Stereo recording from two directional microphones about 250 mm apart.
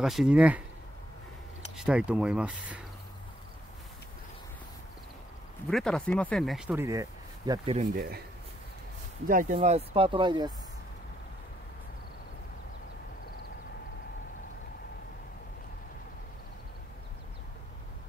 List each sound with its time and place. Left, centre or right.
0.0 s speech: centre
1.8 s speech: centre
5.7 s speech: centre
7.9 s speech: right
9.3 s speech: right